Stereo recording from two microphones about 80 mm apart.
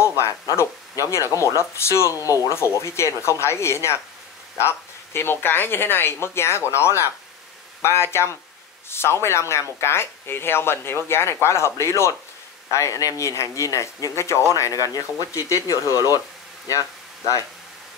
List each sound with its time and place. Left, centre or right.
0.0 s speech: left